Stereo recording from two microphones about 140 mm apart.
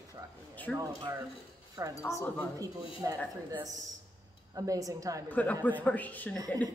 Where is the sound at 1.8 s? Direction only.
25° right (ahead or behind).